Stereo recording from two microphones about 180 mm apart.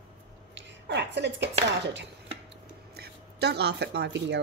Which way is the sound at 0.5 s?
70° right (ahead or behind).